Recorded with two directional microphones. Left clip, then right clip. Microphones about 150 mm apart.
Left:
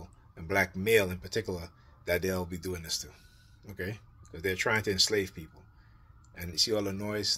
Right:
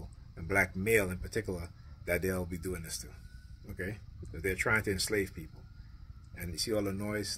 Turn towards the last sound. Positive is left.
turn(degrees=-20)  # may be behind; listen again after turning